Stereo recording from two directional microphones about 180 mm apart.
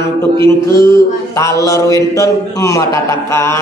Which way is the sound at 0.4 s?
25° right (ahead or behind).